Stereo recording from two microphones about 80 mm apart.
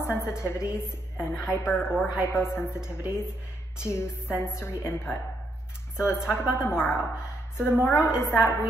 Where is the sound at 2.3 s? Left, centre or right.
Left.